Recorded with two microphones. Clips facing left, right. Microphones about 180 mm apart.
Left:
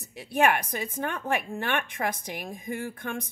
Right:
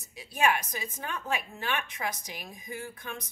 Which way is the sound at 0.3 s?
60° left (ahead or behind).